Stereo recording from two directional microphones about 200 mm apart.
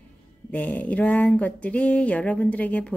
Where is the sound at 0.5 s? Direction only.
5° left (ahead or behind).